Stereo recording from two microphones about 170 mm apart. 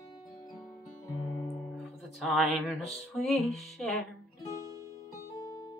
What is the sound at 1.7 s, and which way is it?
Music, centre (ahead or behind).